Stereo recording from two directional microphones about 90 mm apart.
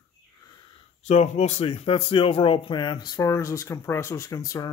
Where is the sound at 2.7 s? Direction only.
60° left (ahead or behind).